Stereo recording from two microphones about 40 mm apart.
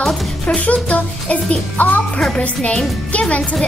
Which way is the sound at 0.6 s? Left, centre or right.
Left.